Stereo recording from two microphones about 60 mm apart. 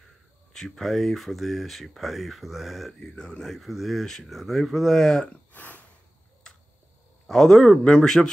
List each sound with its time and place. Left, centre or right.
0.0 s speech: centre
3.0 s speech: centre
5.5 s a sound: left
7.2 s speech: centre